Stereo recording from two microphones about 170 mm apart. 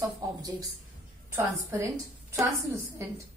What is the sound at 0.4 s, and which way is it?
A woman's voice, 20° right (ahead or behind).